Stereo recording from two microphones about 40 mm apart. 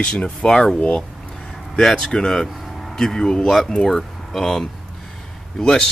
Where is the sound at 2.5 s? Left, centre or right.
Centre.